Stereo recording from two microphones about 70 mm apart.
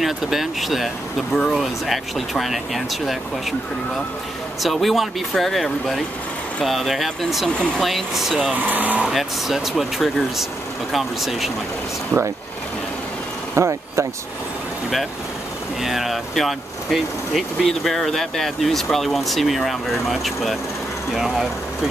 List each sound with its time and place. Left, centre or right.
0.0 s speech: centre
4.6 s speech: centre
7.4 s speech: centre
7.8 s speech: centre
8.5 s speech: right
9.0 s speech: centre
13.6 s speech: right
15.8 s speech: centre